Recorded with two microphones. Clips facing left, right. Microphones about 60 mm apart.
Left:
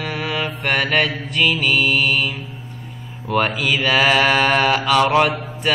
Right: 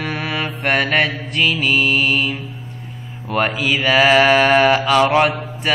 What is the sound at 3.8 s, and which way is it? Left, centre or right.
Mantra, centre.